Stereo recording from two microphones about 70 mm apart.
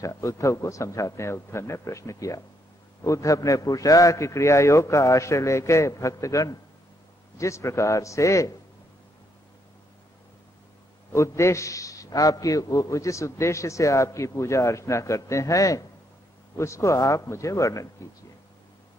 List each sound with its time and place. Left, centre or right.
0.0 s a man's voice: left
11.1 s a man's voice: left